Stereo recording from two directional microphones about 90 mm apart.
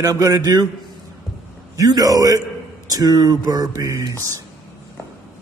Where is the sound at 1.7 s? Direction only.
40° right (ahead or behind).